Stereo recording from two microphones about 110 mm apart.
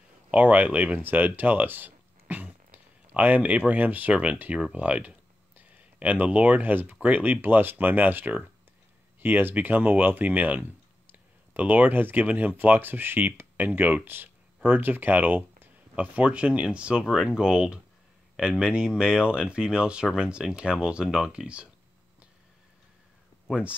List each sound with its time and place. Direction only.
0.3 s speech: 15° right (ahead or behind)